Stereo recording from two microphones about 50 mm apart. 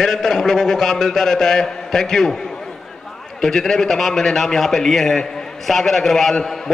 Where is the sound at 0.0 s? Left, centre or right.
Centre.